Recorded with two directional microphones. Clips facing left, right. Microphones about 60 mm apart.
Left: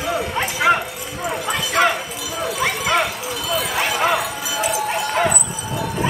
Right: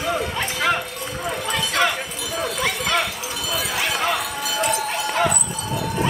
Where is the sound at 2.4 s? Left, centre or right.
Centre.